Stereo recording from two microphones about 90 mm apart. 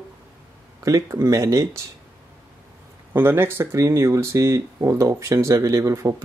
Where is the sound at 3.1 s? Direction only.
25° right (ahead or behind).